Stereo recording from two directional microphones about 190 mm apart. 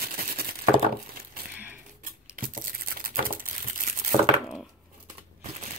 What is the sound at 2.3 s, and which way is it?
Crumpling, 45° right (ahead or behind).